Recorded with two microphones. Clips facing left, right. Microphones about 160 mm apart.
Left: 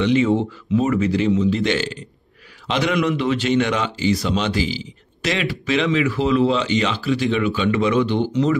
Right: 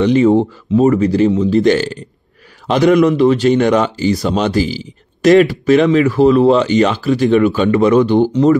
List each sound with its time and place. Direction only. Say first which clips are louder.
0.0 s speech: right 7 dB; 40° right (ahead or behind)